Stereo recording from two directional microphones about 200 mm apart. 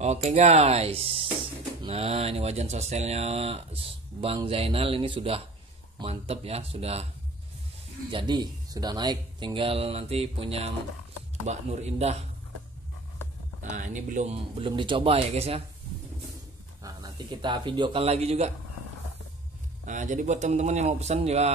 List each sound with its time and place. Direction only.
0.0 s speech: 35° right (ahead or behind)
8.1 s speech: 25° right (ahead or behind)
13.6 s speech: 40° right (ahead or behind)
16.8 s speech: 20° right (ahead or behind)
19.9 s speech: 40° right (ahead or behind)